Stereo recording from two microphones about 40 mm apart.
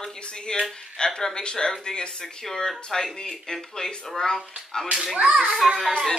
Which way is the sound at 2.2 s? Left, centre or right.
Centre.